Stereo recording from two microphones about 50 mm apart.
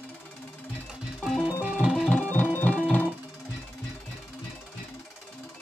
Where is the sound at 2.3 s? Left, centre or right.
Left.